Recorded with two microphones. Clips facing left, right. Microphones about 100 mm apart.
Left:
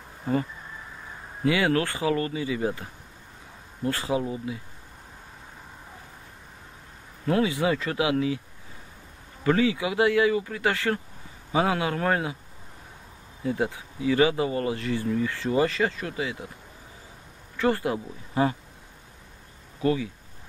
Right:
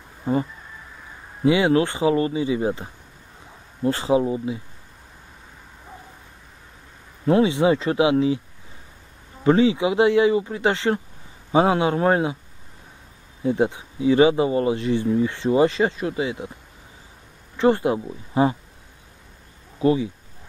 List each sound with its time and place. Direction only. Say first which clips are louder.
0.2 s speech: right 4 dB; 20° right (ahead or behind)
7.2 s speech: right 6 dB; 25° right (ahead or behind)
9.4 s speech: right 6 dB; 25° right (ahead or behind)
13.4 s speech: right 6 dB; 25° right (ahead or behind)
17.6 s speech: right 6 dB; 20° right (ahead or behind)
19.8 s speech: right 5 dB; 20° right (ahead or behind)